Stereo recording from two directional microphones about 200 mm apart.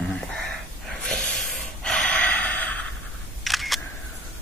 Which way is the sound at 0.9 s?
Centre (ahead or behind).